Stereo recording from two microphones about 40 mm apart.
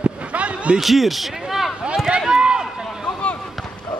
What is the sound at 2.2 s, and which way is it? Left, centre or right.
Run, right.